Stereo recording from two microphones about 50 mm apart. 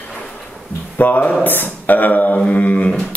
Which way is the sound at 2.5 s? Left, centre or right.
Left.